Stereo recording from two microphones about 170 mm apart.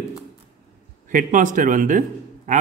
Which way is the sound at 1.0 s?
50° right (ahead or behind).